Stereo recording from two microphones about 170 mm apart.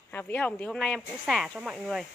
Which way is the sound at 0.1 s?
10° left (ahead or behind).